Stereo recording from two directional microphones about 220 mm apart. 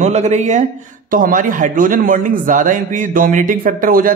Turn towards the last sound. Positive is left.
turn(degrees=-40)  # may be behind; listen again after turning